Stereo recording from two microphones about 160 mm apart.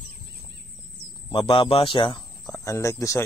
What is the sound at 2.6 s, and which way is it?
Speech, 20° left (ahead or behind).